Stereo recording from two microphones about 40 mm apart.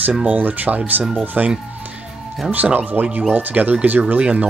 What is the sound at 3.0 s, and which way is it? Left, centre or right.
Speech, right.